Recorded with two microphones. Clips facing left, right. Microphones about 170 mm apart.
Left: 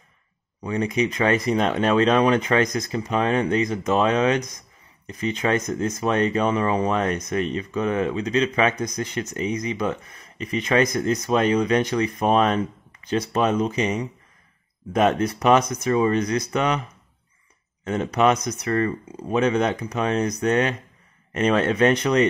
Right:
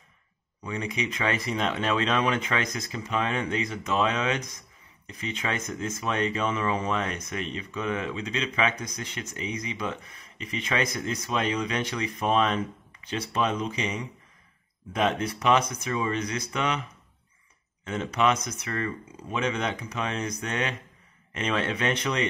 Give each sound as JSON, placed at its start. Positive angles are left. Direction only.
{"t": 0.7, "sound": "speech", "side_deg": 40}
{"t": 17.8, "sound": "speech", "side_deg": 40}